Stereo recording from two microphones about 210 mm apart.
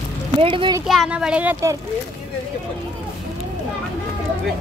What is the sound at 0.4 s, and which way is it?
Speech, 25° right (ahead or behind).